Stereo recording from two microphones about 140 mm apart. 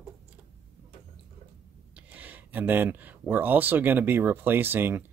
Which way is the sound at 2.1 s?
10° right (ahead or behind).